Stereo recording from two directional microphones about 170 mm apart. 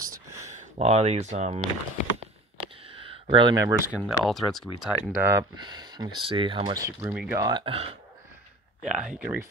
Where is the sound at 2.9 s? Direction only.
30° right (ahead or behind).